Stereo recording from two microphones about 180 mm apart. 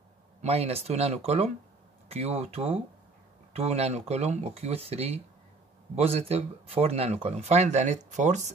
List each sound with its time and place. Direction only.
0.4 s speech: 35° right (ahead or behind)